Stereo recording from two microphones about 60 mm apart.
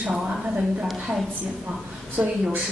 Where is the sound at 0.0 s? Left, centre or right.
Centre.